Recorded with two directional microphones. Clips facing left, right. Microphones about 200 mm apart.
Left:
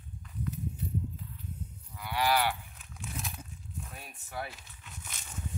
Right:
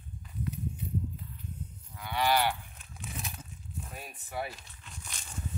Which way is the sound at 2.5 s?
Centre (ahead or behind).